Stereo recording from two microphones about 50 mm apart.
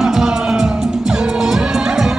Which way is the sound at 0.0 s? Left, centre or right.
Centre.